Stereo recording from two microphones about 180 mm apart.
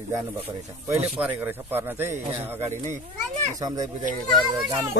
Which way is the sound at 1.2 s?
10° right (ahead or behind).